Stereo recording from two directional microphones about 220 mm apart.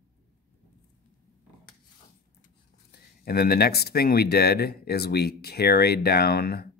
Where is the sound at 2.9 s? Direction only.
45° left (ahead or behind).